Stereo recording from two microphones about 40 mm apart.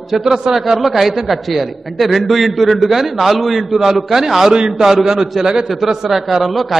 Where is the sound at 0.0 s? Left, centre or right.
Centre.